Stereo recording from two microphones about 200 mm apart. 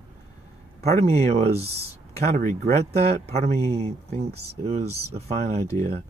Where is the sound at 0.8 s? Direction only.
30° right (ahead or behind).